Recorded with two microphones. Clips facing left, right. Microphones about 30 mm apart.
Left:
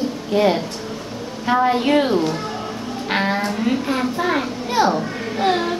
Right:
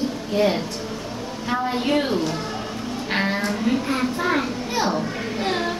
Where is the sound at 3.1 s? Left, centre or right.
Centre.